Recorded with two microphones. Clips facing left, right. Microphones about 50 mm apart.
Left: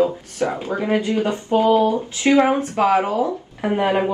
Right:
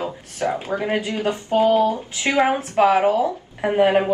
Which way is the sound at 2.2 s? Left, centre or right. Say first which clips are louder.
Left 3 dB; right.